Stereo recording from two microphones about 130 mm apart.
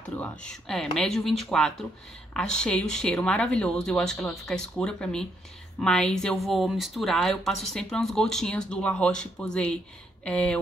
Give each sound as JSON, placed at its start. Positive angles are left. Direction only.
{"t": 0.2, "sound": "a woman's voice", "side_deg": 5}